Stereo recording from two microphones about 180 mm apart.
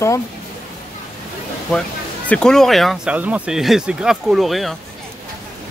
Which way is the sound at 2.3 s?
5° left (ahead or behind).